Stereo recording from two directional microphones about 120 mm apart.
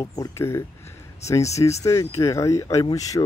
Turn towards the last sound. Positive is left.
turn(degrees=30)  # may be behind; listen again after turning